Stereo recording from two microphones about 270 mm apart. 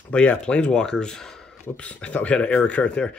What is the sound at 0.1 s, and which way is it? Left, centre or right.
Speech, centre.